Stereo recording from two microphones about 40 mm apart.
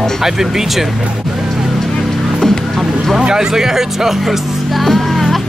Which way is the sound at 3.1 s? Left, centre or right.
Centre.